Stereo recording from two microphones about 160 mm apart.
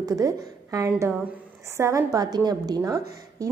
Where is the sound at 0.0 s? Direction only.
20° right (ahead or behind).